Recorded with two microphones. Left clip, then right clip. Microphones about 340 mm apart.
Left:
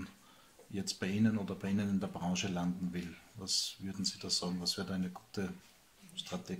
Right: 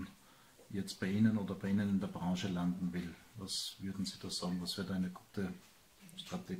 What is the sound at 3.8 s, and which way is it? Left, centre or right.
Speech, centre.